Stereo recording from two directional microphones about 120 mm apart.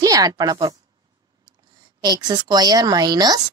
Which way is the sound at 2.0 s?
35° right (ahead or behind).